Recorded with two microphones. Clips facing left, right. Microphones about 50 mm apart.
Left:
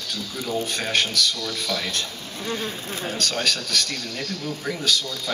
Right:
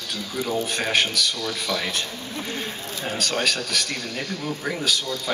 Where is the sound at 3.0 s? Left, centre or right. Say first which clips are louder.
Right 1 dB; centre.